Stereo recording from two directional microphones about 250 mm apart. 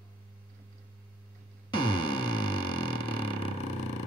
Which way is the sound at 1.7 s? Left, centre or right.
Centre.